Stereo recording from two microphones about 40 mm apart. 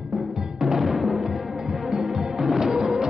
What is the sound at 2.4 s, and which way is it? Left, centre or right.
Music, centre.